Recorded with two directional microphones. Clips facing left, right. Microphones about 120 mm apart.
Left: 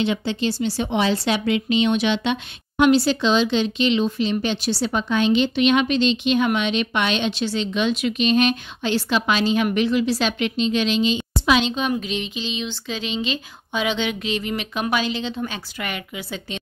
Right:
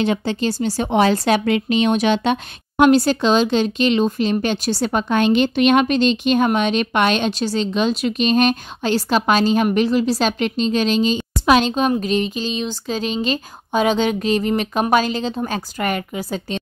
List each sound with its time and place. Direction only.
0.0 s speech: 45° right (ahead or behind)